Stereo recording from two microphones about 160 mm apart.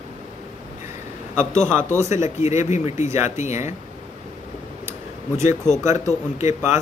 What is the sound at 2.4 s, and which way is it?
Speech, 45° left (ahead or behind).